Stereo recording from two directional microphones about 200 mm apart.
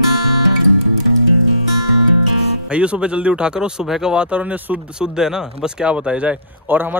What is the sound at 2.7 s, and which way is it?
A man's voice, 5° right (ahead or behind).